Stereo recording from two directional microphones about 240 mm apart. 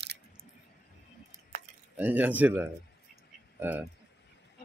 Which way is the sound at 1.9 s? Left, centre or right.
Centre.